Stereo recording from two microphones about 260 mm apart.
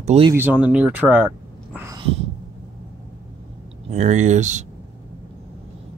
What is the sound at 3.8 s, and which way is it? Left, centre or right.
Speech, right.